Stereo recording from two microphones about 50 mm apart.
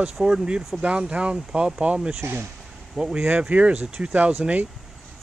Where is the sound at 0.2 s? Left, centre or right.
Centre.